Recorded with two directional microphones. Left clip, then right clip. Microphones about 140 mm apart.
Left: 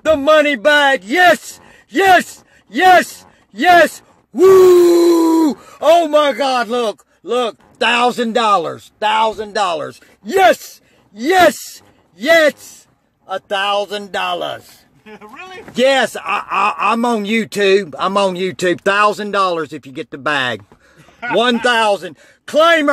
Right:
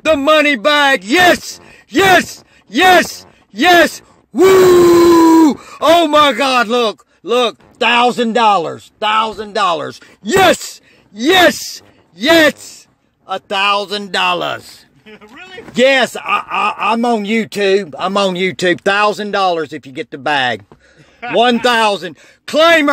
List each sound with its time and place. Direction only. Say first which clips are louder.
0.0 s a man's voice: right 1 dB; 20° right (ahead or behind)
5.9 s speech: right 2 dB; 50° right (ahead or behind)
6.7 s a man's voice: right 4 dB; 25° right (ahead or behind)
7.8 s speech: right 2 dB; 15° right (ahead or behind)
9.6 s a man's voice: right 4 dB; 20° right (ahead or behind)
9.8 s speech: right 6 dB; 45° right (ahead or behind)
11.1 s speech: right 1 dB; 30° right (ahead or behind); by 14.7 s 50° right (ahead or behind)
15.7 s a man's voice: right 2 dB; 25° right (ahead or behind)
16.1 s speech: right 2 dB; 5° right (ahead or behind); by 18.1 s 10° left (ahead or behind)
18.1 s speech: right 3 dB; 15° right (ahead or behind)
21.5 s a man's voice: right 1 dB; 25° right (ahead or behind)